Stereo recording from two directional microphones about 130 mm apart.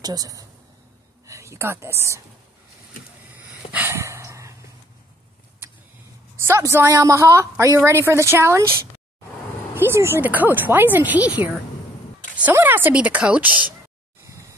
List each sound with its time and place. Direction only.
0.0 s a woman's voice: 30° right (ahead or behind)
3.7 s dog: 20° right (ahead or behind)
6.4 s a woman's voice: 20° right (ahead or behind)
12.5 s speech: 15° right (ahead or behind)